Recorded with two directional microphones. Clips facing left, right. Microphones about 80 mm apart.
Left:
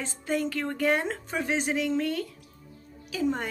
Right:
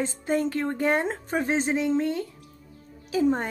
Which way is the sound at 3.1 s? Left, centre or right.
Right.